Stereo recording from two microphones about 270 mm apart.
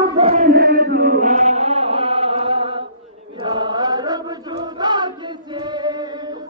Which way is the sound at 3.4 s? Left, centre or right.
Centre.